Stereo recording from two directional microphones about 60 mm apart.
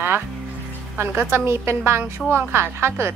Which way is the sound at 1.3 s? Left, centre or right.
Right.